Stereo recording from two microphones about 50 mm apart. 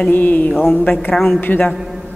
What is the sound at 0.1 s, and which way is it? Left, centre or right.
Speech, left.